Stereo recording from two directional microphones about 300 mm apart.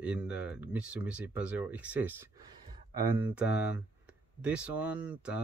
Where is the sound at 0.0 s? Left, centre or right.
Centre.